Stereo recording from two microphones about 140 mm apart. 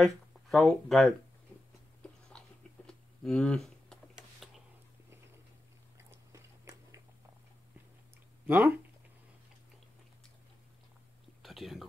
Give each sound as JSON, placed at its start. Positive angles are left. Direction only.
{"t": 0.0, "sound": "speech", "side_deg": 0}
{"t": 2.0, "sound": "biting", "side_deg": 10}
{"t": 2.9, "sound": "a sound", "side_deg": 5}
{"t": 5.9, "sound": "biting", "side_deg": -20}
{"t": 8.5, "sound": "speech", "side_deg": -15}
{"t": 11.4, "sound": "whispering", "side_deg": 0}